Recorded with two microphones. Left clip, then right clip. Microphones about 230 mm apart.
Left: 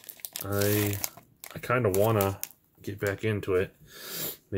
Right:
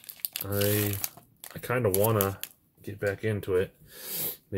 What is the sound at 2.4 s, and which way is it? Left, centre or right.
Speech, centre.